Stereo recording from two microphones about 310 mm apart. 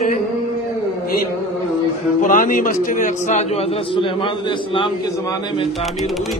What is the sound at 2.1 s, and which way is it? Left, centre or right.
A man's voice, left.